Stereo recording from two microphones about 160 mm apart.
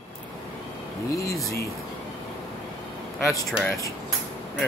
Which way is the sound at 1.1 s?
20° left (ahead or behind).